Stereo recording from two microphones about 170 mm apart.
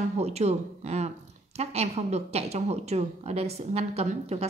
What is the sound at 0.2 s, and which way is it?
A woman's voice, 40° right (ahead or behind).